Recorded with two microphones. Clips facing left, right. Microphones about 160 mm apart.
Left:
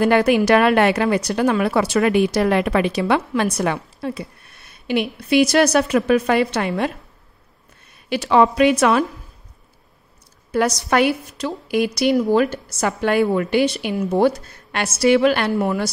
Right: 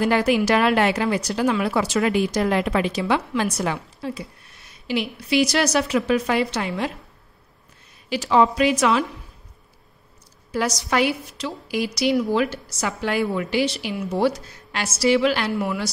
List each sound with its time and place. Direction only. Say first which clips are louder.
0.0 s a woman's voice: left 4 dB; 55° left (ahead or behind)
8.1 s a woman's voice: left 3 dB; 65° left (ahead or behind)
10.5 s a woman's voice: left 4 dB; 55° left (ahead or behind)